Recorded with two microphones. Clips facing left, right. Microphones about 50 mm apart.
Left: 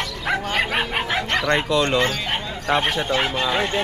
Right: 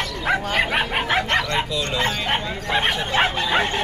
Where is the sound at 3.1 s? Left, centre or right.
Right.